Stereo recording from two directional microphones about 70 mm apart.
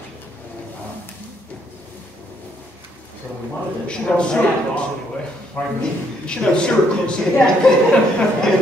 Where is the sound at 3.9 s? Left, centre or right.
Centre.